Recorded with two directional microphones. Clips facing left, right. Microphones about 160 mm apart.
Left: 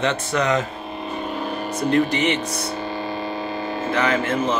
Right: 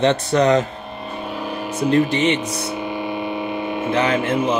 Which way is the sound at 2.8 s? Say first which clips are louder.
Right 2 dB; 20° right (ahead or behind).